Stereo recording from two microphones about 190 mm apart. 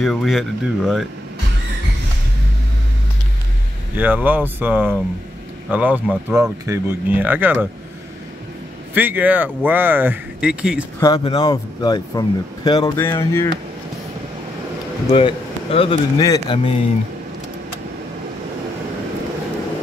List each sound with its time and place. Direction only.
0.0 s speech: centre (ahead or behind)
3.9 s speech: 10° right (ahead or behind)
8.9 s speech: 10° right (ahead or behind)
11.0 s speech: 20° left (ahead or behind)
12.9 s music: 15° left (ahead or behind)
15.0 s speech: 30° left (ahead or behind)